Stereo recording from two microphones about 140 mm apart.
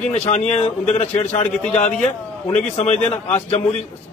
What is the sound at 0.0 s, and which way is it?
A man's voice, 50° left (ahead or behind).